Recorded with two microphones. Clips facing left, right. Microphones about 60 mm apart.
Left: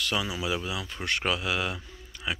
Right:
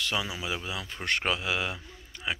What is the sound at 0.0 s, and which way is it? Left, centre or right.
Speech, centre.